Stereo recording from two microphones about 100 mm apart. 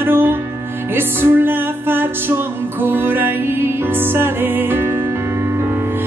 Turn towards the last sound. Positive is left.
turn(degrees=-20)  # may be behind; listen again after turning